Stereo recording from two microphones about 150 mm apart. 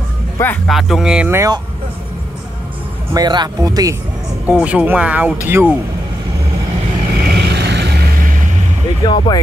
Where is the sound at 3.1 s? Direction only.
30° right (ahead or behind).